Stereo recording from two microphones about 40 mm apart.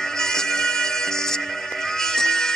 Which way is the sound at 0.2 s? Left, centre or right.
Centre.